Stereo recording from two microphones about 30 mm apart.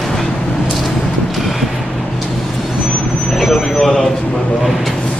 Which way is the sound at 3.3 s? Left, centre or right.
Centre.